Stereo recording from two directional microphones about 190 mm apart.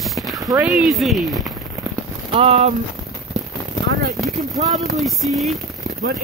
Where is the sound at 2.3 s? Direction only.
30° right (ahead or behind).